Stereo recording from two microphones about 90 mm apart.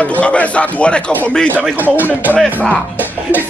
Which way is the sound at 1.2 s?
15° left (ahead or behind).